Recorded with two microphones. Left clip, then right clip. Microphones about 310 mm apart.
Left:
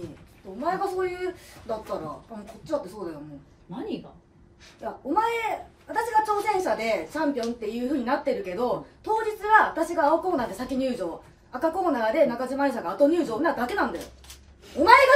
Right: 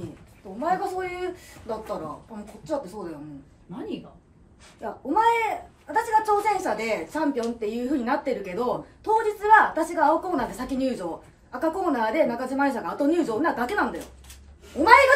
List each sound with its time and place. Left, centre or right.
0.6 s speech: centre
5.1 s speech: centre